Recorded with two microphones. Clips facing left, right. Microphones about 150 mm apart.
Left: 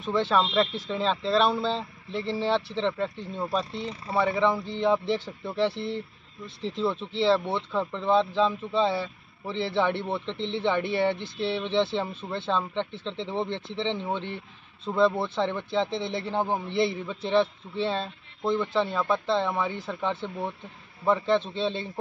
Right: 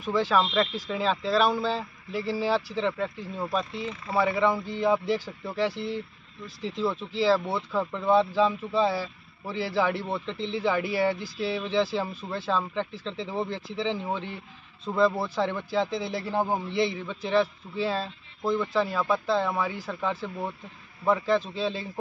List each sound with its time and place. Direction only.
0.0 s speech: centre (ahead or behind)
3.8 s speech: 35° left (ahead or behind)
4.1 s speech: 5° right (ahead or behind)